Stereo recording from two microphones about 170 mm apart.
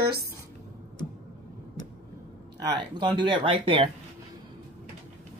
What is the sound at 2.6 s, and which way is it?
Speech, 25° right (ahead or behind).